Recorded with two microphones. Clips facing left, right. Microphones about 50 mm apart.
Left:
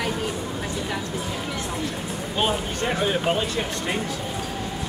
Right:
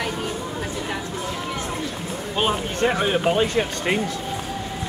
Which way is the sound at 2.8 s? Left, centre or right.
Right.